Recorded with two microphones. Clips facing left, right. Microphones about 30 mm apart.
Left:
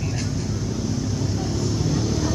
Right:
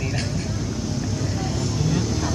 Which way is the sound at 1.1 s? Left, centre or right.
Centre.